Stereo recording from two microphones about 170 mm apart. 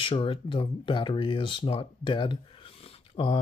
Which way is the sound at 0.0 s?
30° left (ahead or behind).